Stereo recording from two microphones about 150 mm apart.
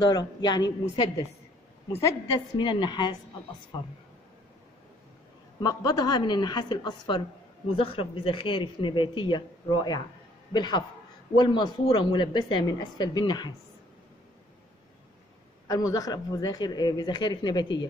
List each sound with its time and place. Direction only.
0.1 s speech: 25° left (ahead or behind)
5.6 s speech: 25° left (ahead or behind)
15.7 s speech: 25° left (ahead or behind)